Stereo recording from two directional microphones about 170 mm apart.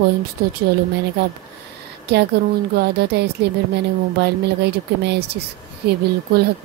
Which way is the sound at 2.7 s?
70° right (ahead or behind).